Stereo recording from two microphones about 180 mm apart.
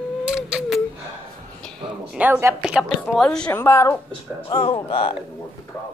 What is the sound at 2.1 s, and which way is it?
A woman's voice, 10° right (ahead or behind).